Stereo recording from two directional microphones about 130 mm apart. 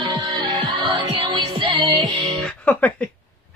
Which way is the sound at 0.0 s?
40° right (ahead or behind).